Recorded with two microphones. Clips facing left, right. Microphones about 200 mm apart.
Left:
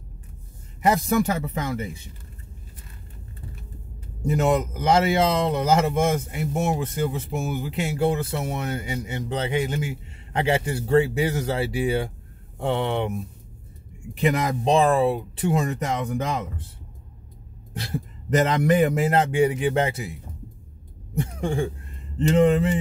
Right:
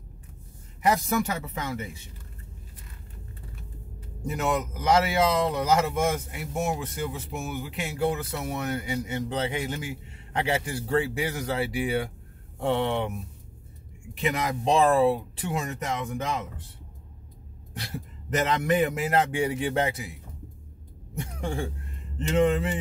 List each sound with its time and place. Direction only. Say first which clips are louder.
0.8 s speech: left 4 dB; 30° left (ahead or behind)
4.3 s speech: left 6 dB; 30° left (ahead or behind)
14.1 s speech: left 5 dB; 35° left (ahead or behind)
14.6 s speech: left 1 dB; 20° left (ahead or behind)
15.5 s speech: left 4 dB; 40° left (ahead or behind)
17.7 s speech: left 6 dB; 30° left (ahead or behind)
22.3 s speech: left 4 dB; 35° left (ahead or behind)